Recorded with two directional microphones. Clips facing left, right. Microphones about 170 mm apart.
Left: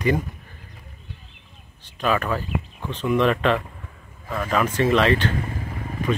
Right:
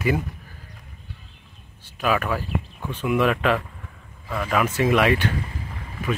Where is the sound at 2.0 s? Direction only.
5° right (ahead or behind).